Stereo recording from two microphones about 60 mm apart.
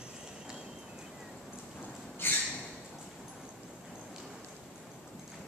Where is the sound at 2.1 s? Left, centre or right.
Left.